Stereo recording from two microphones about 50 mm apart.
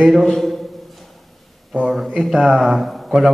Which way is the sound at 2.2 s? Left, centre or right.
Centre.